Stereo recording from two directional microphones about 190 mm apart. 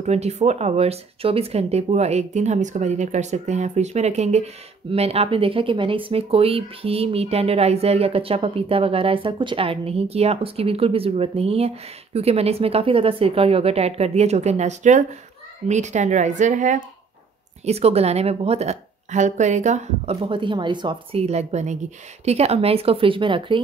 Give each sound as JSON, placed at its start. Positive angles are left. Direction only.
{"t": 0.0, "sound": "speech", "side_deg": -35}
{"t": 20.2, "sound": "speech", "side_deg": -25}